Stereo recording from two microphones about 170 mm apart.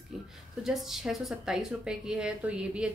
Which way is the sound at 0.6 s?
Centre (ahead or behind).